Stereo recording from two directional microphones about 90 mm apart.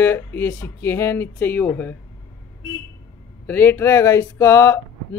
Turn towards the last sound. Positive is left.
turn(degrees=30)  # may be behind; listen again after turning